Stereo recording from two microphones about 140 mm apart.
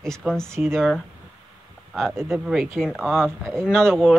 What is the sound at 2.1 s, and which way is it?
Speech, 15° right (ahead or behind).